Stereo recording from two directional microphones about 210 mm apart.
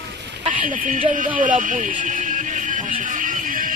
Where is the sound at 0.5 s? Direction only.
40° right (ahead or behind).